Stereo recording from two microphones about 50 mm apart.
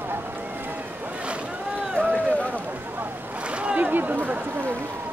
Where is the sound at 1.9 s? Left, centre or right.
Right.